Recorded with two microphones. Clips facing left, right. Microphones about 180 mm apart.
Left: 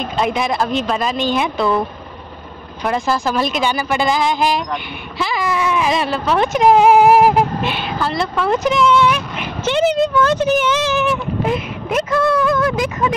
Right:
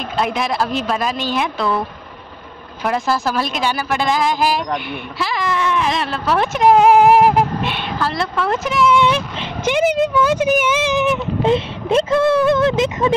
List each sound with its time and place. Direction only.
0.0 s speech: centre (ahead or behind); by 13.1 s 25° right (ahead or behind)